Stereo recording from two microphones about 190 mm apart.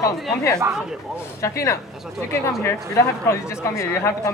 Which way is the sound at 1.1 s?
15° left (ahead or behind).